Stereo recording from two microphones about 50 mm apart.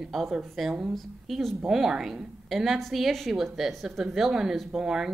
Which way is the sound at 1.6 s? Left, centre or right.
Centre.